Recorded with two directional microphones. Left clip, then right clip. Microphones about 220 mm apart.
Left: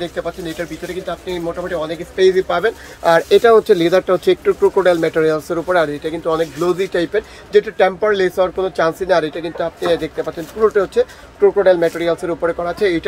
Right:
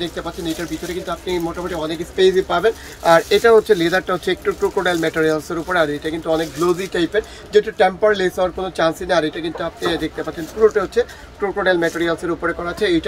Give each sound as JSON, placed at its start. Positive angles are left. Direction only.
{"t": 2.1, "sound": "speech", "side_deg": 15}